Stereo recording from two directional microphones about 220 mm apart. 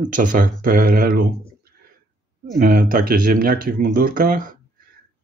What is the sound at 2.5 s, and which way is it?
Speech, 40° right (ahead or behind).